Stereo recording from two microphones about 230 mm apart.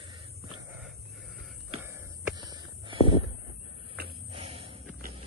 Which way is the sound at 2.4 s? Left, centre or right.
Centre.